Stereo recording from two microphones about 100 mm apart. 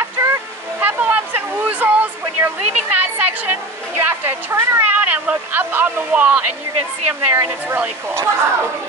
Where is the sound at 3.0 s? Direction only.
20° right (ahead or behind).